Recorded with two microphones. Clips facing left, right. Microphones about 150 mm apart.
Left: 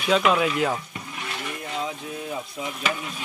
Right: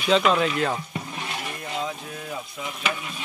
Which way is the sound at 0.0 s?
5° left (ahead or behind).